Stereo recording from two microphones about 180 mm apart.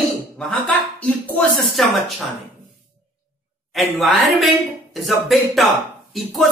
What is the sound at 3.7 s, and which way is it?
Speech, centre (ahead or behind).